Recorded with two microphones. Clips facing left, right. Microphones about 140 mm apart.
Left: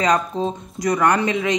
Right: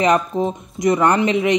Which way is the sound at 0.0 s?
25° right (ahead or behind).